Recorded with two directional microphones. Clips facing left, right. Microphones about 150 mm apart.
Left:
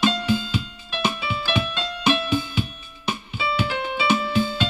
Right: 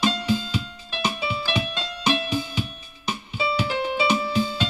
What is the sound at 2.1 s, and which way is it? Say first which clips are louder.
Music: left 2 dB; 35° right (ahead or behind).